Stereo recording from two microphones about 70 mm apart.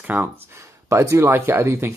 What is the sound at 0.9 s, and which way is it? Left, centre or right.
Speech, right.